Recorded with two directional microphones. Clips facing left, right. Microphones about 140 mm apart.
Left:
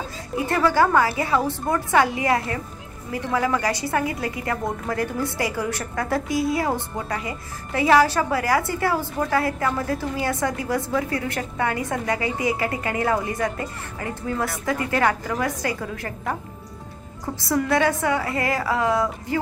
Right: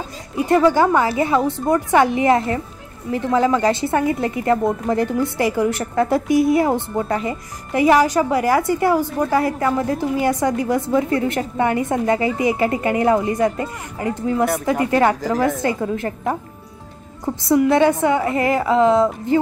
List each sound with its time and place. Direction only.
0.5 s a woman's voice: 20° right (ahead or behind)
17.4 s a woman's voice: 20° right (ahead or behind)